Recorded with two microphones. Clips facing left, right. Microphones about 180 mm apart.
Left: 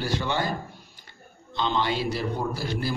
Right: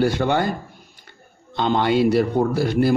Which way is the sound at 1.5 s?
55° right (ahead or behind).